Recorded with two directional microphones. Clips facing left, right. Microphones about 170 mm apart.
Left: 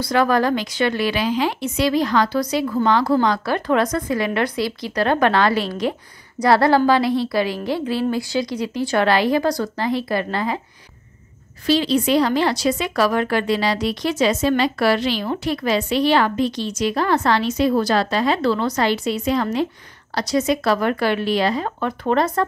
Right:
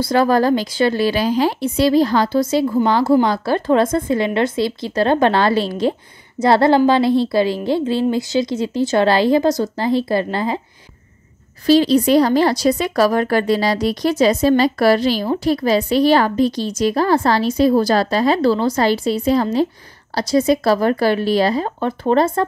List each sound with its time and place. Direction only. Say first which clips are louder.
0.0 s speech: right 3 dB; 30° right (ahead or behind)
11.6 s speech: right 5 dB; 40° right (ahead or behind)